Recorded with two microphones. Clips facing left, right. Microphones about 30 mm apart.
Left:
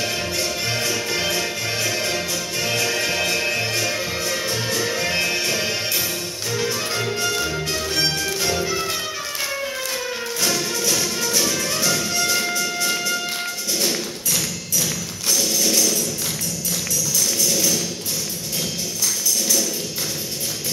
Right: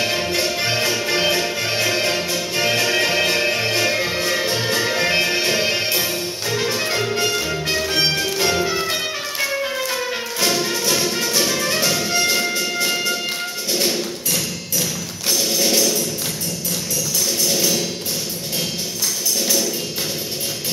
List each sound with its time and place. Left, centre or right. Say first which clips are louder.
0.0 s music: right 4 dB; right
13.7 s thump: right 3 dB; centre
17.5 s music: right 3 dB; right